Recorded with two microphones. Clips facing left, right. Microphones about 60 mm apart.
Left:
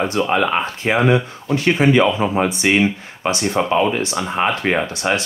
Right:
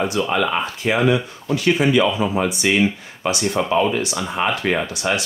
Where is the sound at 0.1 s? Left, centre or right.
Left.